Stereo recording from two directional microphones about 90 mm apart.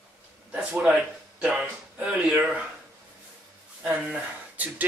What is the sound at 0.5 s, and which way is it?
Speech, 10° right (ahead or behind).